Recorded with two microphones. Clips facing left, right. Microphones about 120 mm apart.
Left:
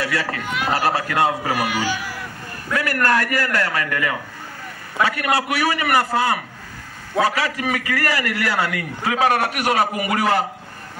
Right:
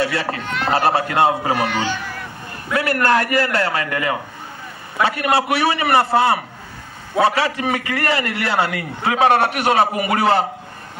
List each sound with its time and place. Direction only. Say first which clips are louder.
0.0 s a man's voice: right 3 dB; 25° right (ahead or behind)
0.4 s speech: right 1 dB; 5° left (ahead or behind)
0.7 s a man's voice: right 4 dB; 25° right (ahead or behind)
1.6 s speech: right 2 dB; 10° left (ahead or behind)
2.7 s a man's voice: right 3 dB; 25° right (ahead or behind)